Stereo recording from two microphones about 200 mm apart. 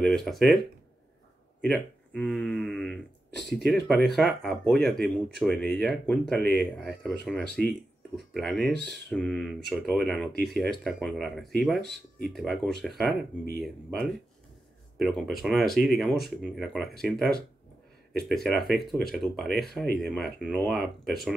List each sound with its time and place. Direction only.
0.0 s speech: centre (ahead or behind)
1.6 s speech: 5° left (ahead or behind)
11.8 s speech: 55° right (ahead or behind)
12.3 s speech: centre (ahead or behind)